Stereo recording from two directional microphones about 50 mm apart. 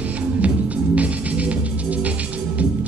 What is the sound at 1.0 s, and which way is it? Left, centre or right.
Music, right.